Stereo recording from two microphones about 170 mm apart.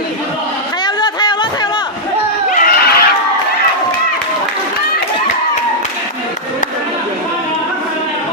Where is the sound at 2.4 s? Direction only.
55° left (ahead or behind).